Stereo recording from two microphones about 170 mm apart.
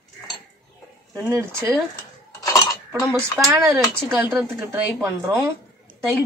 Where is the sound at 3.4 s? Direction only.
15° right (ahead or behind).